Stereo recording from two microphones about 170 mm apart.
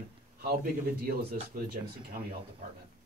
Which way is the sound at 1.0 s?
60° right (ahead or behind).